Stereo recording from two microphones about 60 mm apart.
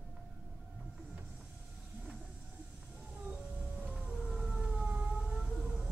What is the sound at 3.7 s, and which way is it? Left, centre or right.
Siren, right.